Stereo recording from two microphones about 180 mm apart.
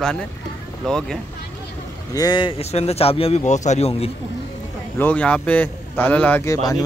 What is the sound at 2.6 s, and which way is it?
A man's voice, 35° left (ahead or behind).